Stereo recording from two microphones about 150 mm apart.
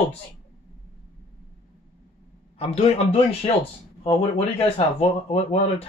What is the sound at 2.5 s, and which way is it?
Speech, 40° left (ahead or behind).